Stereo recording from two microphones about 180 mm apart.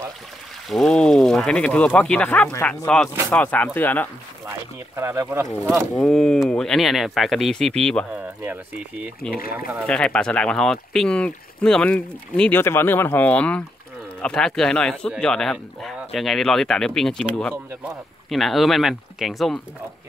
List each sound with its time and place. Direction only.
0.7 s speech: centre (ahead or behind)
4.5 s speech: 15° right (ahead or behind)
5.7 s speech: centre (ahead or behind)
8.1 s speech: 5° right (ahead or behind)
9.3 s speech: 55° left (ahead or behind)
9.8 s speech: 5° left (ahead or behind)